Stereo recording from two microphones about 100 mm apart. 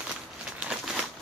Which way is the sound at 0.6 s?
5° right (ahead or behind).